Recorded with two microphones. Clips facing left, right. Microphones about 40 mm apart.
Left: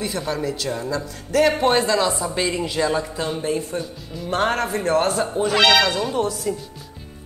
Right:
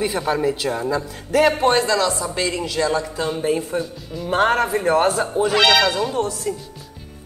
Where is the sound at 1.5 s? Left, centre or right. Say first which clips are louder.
Right 1 dB; centre.